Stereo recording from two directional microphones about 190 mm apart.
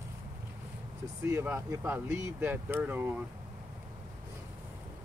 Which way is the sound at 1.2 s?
15° right (ahead or behind).